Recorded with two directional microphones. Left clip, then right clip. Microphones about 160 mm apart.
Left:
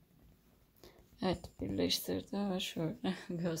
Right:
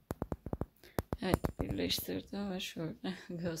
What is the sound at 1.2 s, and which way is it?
Speech, centre (ahead or behind).